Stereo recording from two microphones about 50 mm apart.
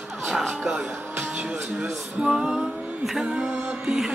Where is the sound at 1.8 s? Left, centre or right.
Centre.